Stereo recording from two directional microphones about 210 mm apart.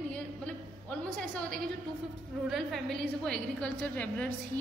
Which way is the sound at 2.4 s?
Centre (ahead or behind).